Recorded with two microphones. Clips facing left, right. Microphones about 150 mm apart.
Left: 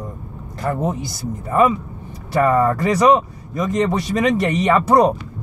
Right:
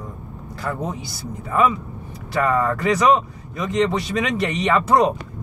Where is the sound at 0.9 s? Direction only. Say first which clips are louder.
Left 5 dB; 45° left (ahead or behind).